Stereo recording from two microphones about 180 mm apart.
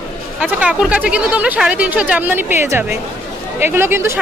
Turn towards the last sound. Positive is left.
turn(degrees=-15)  # may be behind; listen again after turning